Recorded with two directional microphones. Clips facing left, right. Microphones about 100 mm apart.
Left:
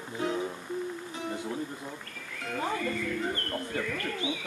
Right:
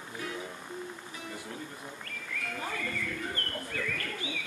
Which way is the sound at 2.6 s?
25° left (ahead or behind).